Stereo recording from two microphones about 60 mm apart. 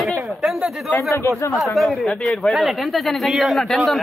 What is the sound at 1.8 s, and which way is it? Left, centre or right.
Speech, centre.